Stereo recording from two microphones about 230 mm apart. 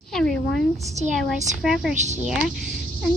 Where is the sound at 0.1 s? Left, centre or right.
Centre.